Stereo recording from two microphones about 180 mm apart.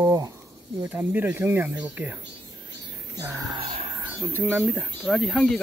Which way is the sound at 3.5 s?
35° right (ahead or behind).